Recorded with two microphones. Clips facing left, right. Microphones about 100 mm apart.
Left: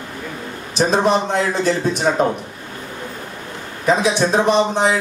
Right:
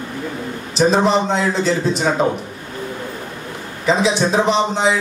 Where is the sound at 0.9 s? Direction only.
55° left (ahead or behind).